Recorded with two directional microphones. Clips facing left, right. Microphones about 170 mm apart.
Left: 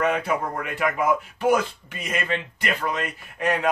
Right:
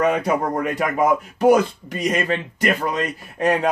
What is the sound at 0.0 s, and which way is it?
Speech, 40° right (ahead or behind).